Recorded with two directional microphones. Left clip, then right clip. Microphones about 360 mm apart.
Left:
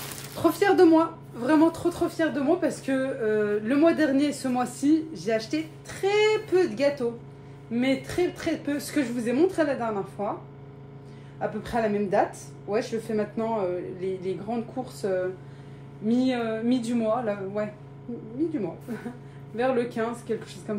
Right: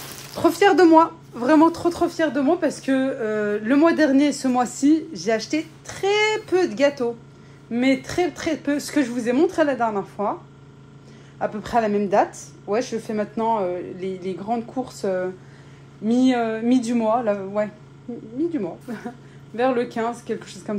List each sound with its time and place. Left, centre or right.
0.4 s a woman's voice: right
16.1 s a woman's voice: centre
19.5 s a woman's voice: right